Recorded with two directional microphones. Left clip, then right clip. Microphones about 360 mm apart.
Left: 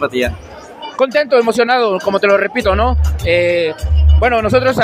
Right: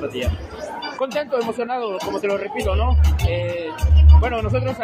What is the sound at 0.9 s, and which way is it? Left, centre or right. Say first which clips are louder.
A man's voice: left 11 dB; left.